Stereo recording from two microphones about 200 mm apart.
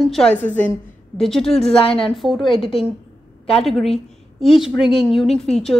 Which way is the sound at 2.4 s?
25° left (ahead or behind).